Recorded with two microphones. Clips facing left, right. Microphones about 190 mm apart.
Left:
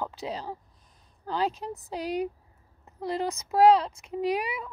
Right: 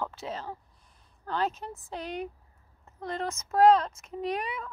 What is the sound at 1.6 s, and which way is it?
Speech, 10° left (ahead or behind).